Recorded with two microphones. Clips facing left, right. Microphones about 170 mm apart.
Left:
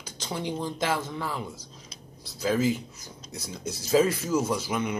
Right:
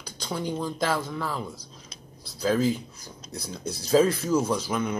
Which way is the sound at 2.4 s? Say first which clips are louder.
Right 1 dB; 40° right (ahead or behind).